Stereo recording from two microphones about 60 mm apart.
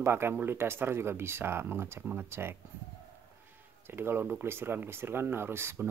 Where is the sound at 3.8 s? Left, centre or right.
Right.